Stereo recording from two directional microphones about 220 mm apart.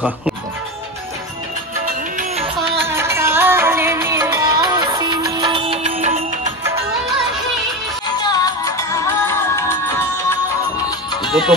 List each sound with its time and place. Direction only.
2.1 s music: 30° right (ahead or behind)
2.8 s music: 10° right (ahead or behind); by 6.2 s 30° right (ahead or behind)
8.2 s music: 15° left (ahead or behind)
11.2 s music: centre (ahead or behind)